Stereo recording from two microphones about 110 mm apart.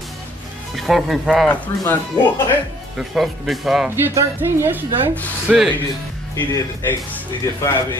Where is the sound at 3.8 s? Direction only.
20° right (ahead or behind).